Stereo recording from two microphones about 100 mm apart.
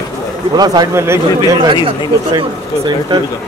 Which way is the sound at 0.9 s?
25° right (ahead or behind).